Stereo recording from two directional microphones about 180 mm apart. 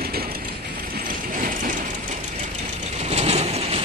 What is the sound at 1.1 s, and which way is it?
Ratchet, 50° right (ahead or behind).